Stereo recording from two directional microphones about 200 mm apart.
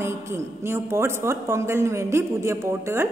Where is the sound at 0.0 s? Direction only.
15° right (ahead or behind).